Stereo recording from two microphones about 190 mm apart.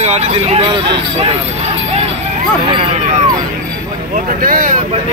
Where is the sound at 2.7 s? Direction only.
30° right (ahead or behind).